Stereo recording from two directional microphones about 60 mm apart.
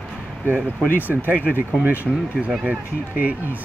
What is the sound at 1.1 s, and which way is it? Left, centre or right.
Speech, centre.